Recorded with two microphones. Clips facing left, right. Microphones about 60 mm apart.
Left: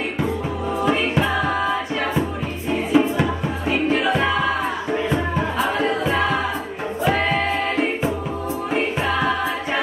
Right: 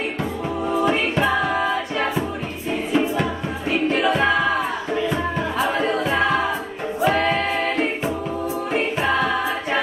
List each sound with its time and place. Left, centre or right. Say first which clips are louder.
2.9 s music: left 3 dB; centre